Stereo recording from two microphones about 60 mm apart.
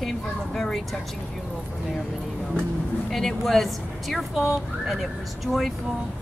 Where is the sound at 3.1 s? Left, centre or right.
Centre.